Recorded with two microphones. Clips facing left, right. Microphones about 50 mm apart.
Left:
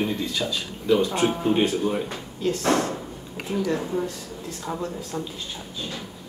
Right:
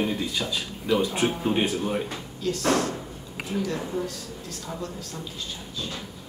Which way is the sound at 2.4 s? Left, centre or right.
Left.